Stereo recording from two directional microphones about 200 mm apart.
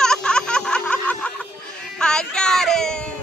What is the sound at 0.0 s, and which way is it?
Music, 5° left (ahead or behind).